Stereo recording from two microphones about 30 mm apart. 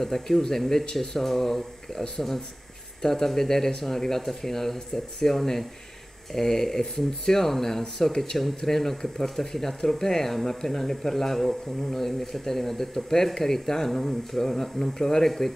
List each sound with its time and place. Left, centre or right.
0.0 s speech: centre